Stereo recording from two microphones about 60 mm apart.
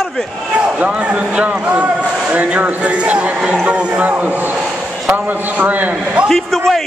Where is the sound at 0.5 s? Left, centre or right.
Right.